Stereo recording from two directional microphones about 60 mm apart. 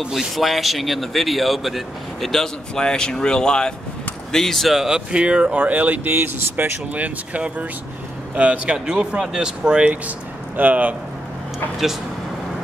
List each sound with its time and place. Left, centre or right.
0.0 s speech: centre
4.8 s speech: centre